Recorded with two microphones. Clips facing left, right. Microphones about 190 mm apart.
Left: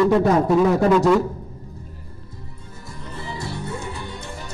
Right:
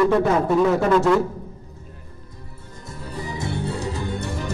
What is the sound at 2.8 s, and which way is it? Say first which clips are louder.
Music: right 2 dB; 10° right (ahead or behind).